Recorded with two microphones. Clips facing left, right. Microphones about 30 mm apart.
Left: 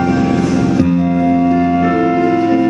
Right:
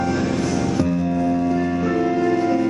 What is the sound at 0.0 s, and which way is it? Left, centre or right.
Music, left.